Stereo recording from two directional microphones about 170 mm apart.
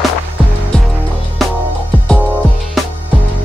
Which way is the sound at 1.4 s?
Centre (ahead or behind).